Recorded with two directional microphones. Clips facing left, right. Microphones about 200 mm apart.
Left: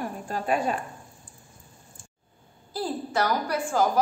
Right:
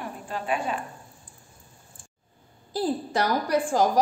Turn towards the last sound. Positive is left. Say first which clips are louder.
# right 2 dB
turn(degrees=-30)  # may be behind; listen again after turning